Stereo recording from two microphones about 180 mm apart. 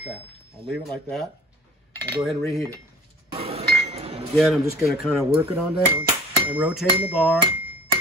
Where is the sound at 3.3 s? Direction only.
35° right (ahead or behind).